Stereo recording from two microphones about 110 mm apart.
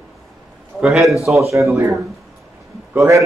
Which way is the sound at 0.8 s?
Centre (ahead or behind).